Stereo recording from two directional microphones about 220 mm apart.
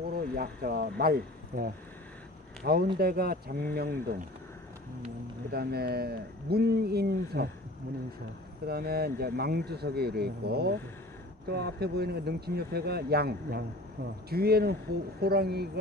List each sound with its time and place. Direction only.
0.0 s speech: 45° right (ahead or behind)
5.5 s speech: 45° right (ahead or behind)
8.6 s speech: 45° right (ahead or behind)